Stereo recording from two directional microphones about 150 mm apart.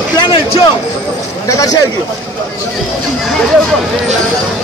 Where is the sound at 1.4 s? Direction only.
25° left (ahead or behind).